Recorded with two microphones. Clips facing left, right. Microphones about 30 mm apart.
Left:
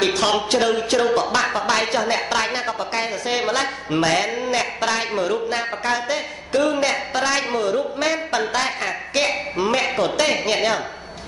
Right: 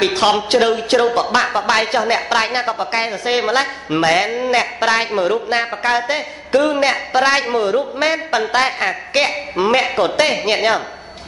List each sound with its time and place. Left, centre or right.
0.1 s a man's voice: right